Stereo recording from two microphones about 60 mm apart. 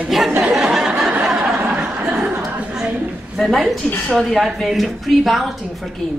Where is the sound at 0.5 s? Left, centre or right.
Centre.